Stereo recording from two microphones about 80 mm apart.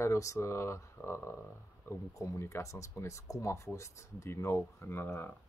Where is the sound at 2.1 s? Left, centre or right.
Left.